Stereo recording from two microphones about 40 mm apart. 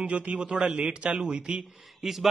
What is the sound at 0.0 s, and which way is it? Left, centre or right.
A man's voice, right.